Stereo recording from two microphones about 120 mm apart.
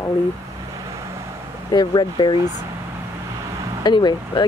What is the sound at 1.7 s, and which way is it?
Speech, 40° left (ahead or behind).